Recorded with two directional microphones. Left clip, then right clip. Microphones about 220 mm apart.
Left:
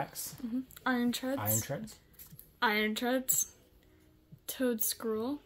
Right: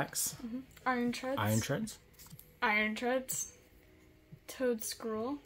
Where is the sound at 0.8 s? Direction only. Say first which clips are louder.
Left 1 dB; 45° left (ahead or behind).